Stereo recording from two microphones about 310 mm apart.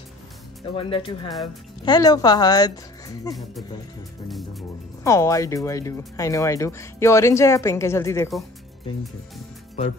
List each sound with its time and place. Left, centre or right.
0.7 s speech: centre
4.3 s speech: centre